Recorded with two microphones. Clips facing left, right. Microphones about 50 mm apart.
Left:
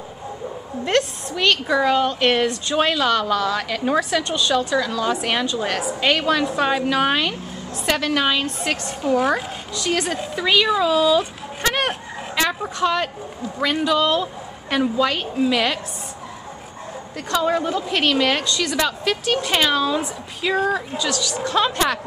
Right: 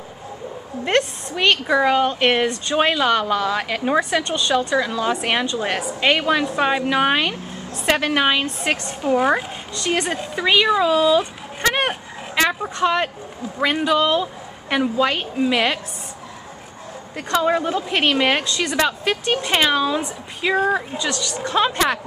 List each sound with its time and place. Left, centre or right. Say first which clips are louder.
0.8 s a woman's voice: right 1 dB; right
9.0 s a woman's voice: right 1 dB; centre
17.3 s a woman's voice: right 1 dB; right